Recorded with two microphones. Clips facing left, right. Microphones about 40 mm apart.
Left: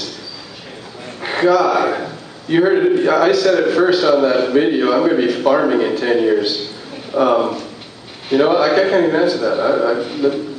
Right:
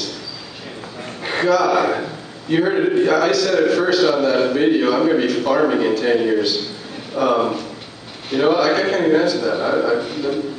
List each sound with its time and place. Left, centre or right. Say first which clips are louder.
1.2 s a man's voice: left 3 dB; centre